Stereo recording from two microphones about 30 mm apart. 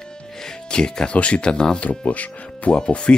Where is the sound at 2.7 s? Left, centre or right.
Left.